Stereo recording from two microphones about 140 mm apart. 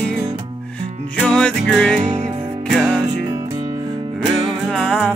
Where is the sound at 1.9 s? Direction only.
55° right (ahead or behind).